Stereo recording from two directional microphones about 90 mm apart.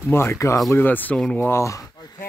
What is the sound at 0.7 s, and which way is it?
Speech, 20° left (ahead or behind).